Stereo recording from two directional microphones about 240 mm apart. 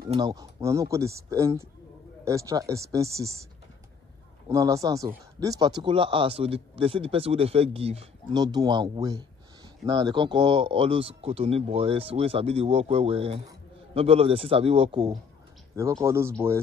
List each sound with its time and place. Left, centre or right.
0.1 s speech: centre
4.5 s speech: centre